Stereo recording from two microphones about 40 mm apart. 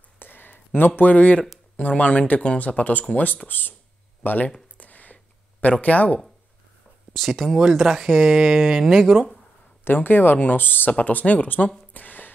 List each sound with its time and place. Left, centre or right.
0.2 s a sound: left
0.7 s speech: left
3.4 s speech: left
4.7 s a sound: left
7.2 s speech: centre
7.8 s speech: centre
8.1 s speech: centre
9.8 s speech: left
10.9 s speech: left
11.9 s a sound: left